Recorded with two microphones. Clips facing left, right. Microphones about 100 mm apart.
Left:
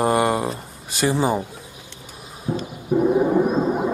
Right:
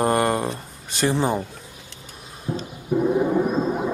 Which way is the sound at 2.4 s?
10° left (ahead or behind).